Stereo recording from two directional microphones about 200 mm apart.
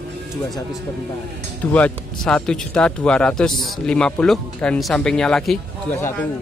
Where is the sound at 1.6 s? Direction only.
5° left (ahead or behind).